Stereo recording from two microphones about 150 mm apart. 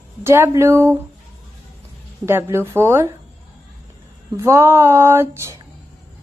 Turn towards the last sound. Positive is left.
turn(degrees=-15)  # may be behind; listen again after turning